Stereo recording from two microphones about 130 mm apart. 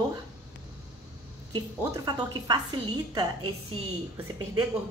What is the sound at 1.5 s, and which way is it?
A woman's voice, 35° right (ahead or behind).